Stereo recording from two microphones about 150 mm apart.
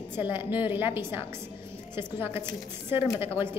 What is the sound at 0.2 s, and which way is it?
Speech, 15° right (ahead or behind).